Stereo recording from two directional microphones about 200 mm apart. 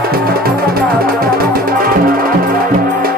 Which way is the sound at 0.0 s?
50° right (ahead or behind).